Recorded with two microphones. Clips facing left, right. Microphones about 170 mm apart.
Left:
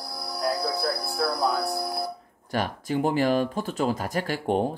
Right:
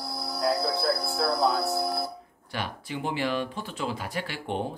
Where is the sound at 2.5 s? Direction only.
45° left (ahead or behind).